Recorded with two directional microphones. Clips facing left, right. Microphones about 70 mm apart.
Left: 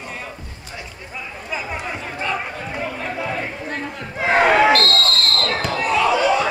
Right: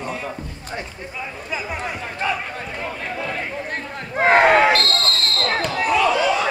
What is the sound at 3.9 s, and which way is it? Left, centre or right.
Crowd, right.